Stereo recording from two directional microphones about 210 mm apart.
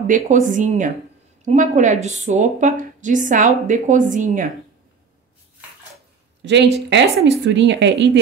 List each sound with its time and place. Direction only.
0.0 s a woman's voice: 35° right (ahead or behind)
6.4 s speech: 55° right (ahead or behind)